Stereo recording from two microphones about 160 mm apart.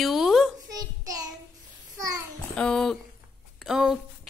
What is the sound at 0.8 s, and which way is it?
Child singing, 25° right (ahead or behind).